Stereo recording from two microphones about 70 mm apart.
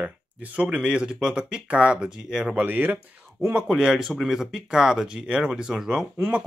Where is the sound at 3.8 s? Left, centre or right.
Centre.